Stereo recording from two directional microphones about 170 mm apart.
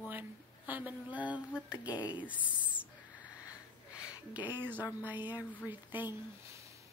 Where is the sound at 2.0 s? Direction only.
10° right (ahead or behind).